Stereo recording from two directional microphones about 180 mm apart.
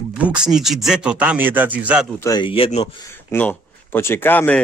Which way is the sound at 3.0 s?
15° left (ahead or behind).